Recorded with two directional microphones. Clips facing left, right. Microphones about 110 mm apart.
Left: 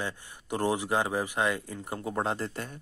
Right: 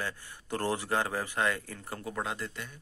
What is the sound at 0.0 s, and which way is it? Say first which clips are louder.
Speech: left 2 dB; 15° left (ahead or behind).